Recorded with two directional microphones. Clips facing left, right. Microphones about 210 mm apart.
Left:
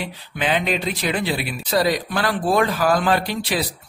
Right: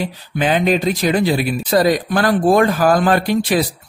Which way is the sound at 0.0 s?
40° right (ahead or behind).